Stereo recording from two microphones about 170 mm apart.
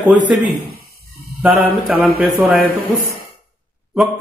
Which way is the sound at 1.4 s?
5° right (ahead or behind).